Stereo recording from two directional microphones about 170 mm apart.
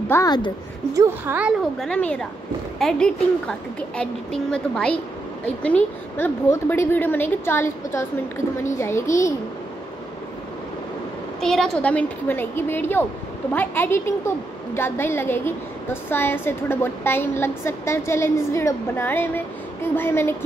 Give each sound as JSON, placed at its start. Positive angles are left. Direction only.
{"t": 0.1, "sound": "speech", "side_deg": 20}
{"t": 0.9, "sound": "a woman's voice", "side_deg": -15}
{"t": 1.8, "sound": "a woman's voice", "side_deg": 5}
{"t": 11.4, "sound": "a woman's voice", "side_deg": 0}